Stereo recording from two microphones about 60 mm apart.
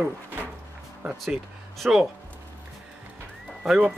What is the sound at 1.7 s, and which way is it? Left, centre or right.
Speech, centre.